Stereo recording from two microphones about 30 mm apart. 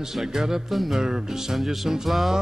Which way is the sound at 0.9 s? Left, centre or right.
Centre.